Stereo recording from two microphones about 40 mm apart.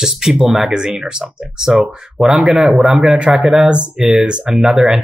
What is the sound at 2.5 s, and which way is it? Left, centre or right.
Speech, right.